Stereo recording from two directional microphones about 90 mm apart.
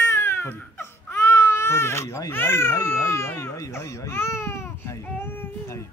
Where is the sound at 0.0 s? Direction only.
30° left (ahead or behind).